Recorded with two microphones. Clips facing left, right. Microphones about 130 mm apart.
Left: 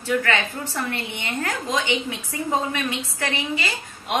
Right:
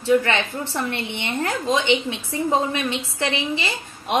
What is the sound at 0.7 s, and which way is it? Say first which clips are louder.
A woman's voice: right 2 dB; 25° right (ahead or behind).